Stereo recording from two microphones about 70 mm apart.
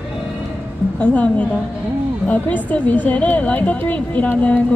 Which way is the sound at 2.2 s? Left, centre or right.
Left.